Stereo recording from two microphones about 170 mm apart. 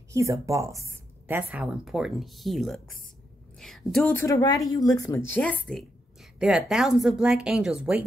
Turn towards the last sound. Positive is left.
turn(degrees=-5)  # may be behind; listen again after turning